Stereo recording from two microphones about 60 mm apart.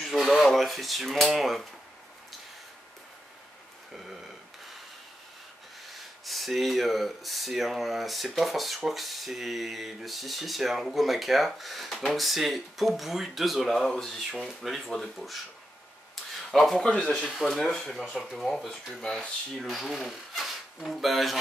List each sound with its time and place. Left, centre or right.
0.0 s speech: centre
6.2 s speech: centre
16.4 s speech: centre
19.6 s speech: centre